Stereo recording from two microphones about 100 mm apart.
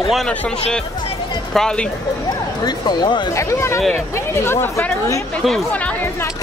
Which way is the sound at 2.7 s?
50° left (ahead or behind).